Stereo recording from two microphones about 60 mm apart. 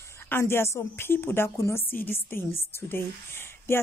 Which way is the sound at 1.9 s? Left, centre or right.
Left.